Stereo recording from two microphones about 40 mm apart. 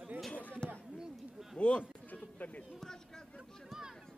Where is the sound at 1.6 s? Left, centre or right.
Left.